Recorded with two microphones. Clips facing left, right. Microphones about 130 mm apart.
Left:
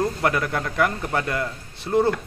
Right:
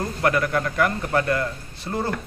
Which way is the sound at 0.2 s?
20° left (ahead or behind).